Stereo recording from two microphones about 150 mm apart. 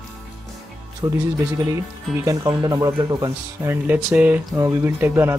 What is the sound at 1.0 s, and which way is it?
Speech, 25° right (ahead or behind).